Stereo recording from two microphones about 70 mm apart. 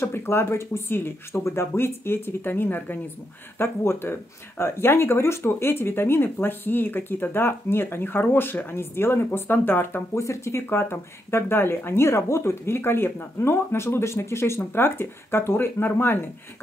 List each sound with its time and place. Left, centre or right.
0.0 s speech: left
10.1 s speech: left